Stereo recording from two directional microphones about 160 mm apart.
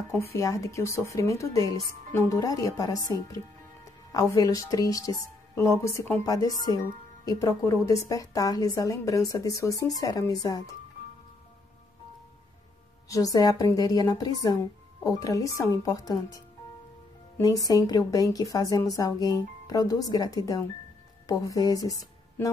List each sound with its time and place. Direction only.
0.2 s a woman's voice: 20° left (ahead or behind)
4.1 s a woman's voice: 20° left (ahead or behind)
13.1 s a woman's voice: 20° left (ahead or behind)